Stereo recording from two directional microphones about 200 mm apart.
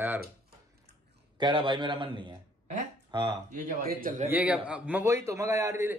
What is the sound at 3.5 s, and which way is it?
Speech, 40° right (ahead or behind).